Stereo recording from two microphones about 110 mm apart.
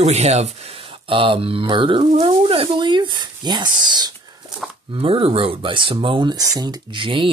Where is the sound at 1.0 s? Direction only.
55° right (ahead or behind); by 4.1 s 40° right (ahead or behind).